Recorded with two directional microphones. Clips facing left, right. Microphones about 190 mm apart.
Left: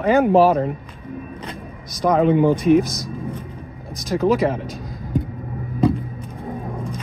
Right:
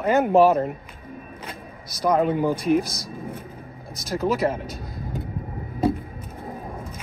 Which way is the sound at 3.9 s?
15° left (ahead or behind).